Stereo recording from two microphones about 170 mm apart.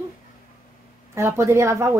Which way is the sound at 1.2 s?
15° right (ahead or behind).